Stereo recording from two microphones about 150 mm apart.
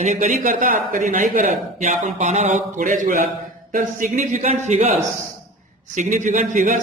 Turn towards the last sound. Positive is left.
turn(degrees=-55)  # may be behind; listen again after turning